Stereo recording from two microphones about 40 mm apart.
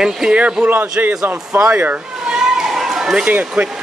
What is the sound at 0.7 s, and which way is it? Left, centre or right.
A man's voice, right.